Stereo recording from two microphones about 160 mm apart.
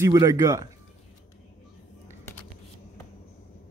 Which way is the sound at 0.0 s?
20° right (ahead or behind).